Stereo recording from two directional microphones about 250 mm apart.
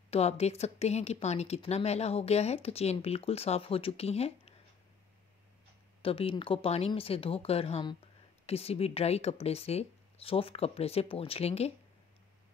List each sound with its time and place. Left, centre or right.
0.1 s speech: left
6.0 s speech: left